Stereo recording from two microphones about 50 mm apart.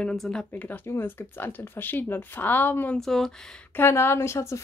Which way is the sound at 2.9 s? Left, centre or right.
Centre.